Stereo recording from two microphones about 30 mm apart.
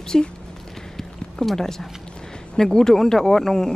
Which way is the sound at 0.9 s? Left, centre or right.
Centre.